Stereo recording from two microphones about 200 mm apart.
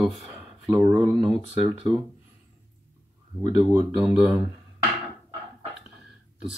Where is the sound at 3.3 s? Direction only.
5° right (ahead or behind).